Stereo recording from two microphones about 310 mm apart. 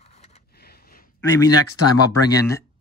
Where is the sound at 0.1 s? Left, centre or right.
Left.